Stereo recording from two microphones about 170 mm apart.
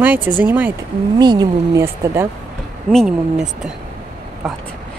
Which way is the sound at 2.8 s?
5° right (ahead or behind).